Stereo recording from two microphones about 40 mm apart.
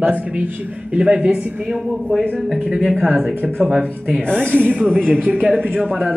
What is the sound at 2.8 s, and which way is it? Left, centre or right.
Speech, centre.